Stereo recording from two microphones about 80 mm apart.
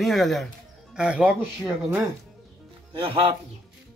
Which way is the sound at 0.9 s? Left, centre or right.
Centre.